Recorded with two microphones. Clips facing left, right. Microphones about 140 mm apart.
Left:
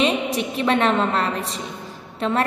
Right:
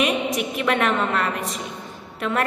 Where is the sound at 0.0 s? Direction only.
30° left (ahead or behind).